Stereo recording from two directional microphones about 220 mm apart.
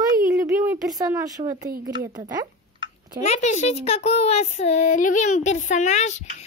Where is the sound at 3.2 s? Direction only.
30° left (ahead or behind).